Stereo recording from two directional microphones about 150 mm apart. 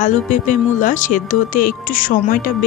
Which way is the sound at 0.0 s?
55° left (ahead or behind).